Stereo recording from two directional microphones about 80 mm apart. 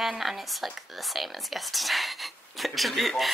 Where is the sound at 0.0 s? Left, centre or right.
Centre.